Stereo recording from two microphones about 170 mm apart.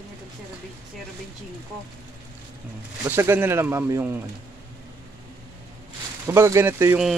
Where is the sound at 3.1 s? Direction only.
15° right (ahead or behind).